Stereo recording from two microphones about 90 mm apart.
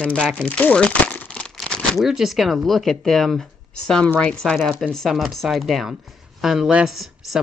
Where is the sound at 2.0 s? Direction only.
5° right (ahead or behind).